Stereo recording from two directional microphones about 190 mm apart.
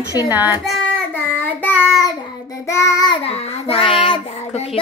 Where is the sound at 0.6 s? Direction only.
Centre (ahead or behind).